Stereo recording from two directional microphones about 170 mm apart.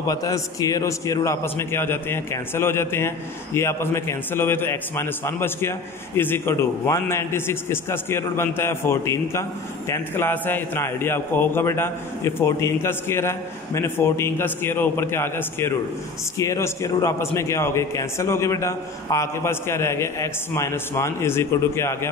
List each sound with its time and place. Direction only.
0.0 s a man's voice: 20° left (ahead or behind)